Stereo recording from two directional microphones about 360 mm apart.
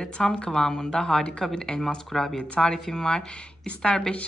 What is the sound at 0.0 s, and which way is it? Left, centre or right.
A woman's voice, centre.